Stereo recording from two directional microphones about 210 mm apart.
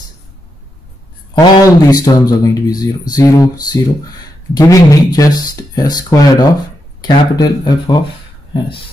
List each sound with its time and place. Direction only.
1.3 s speech: 20° left (ahead or behind)